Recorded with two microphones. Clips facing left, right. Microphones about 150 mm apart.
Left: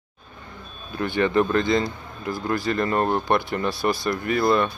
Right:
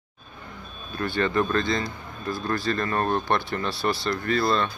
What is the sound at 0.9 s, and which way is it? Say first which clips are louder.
Speech: left 3 dB; 20° left (ahead or behind).